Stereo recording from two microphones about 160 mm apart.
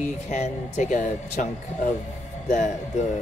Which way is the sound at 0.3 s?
45° left (ahead or behind).